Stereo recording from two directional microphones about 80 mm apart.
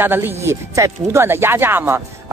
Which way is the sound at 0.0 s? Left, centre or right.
Right.